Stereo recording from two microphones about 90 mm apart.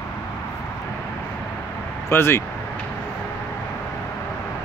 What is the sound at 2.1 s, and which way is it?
Speech, 25° left (ahead or behind).